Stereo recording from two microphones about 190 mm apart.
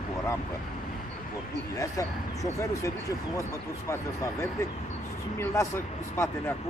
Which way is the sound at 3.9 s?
15° left (ahead or behind).